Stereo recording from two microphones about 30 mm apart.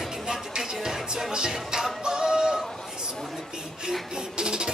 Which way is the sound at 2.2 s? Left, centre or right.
Centre.